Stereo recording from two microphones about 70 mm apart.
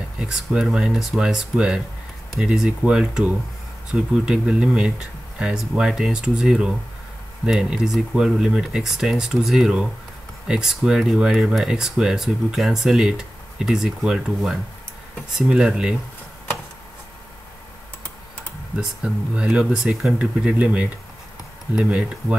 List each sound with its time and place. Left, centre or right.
0.2 s speech: centre
18.8 s speech: centre